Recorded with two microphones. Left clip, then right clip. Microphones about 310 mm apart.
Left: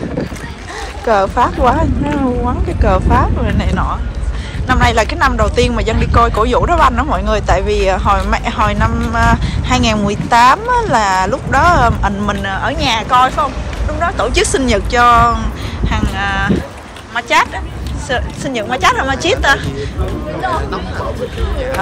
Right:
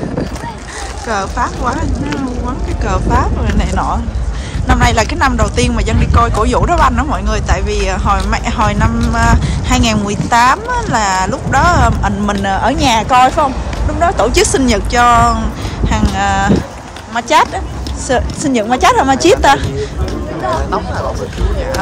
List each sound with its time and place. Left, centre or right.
1.0 s speech: centre